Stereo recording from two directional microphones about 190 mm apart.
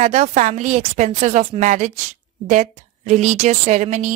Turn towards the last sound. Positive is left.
turn(degrees=-35)  # may be behind; listen again after turning